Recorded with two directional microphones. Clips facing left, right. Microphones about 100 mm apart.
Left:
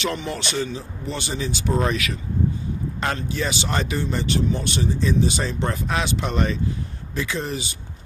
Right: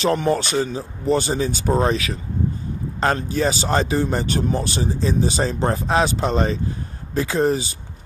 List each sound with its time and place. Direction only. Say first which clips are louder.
0.0 s speech: right 8 dB; 40° right (ahead or behind)